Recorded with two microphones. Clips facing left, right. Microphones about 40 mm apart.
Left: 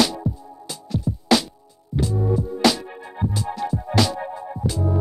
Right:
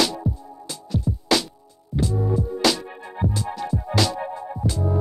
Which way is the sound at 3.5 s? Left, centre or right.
Centre.